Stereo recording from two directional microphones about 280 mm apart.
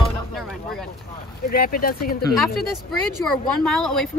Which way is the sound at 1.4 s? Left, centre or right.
Left.